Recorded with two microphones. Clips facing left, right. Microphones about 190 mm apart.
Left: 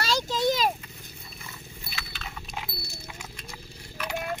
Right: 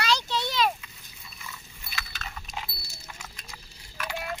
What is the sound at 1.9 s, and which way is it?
Horse, 45° right (ahead or behind).